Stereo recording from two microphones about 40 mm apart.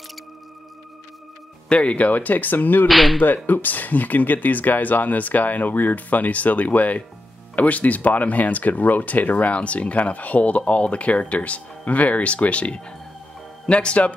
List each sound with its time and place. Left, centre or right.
1.7 s speech: left
2.9 s speech: centre
3.2 s speech: left